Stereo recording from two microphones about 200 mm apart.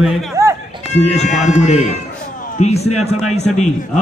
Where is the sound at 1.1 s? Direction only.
35° left (ahead or behind).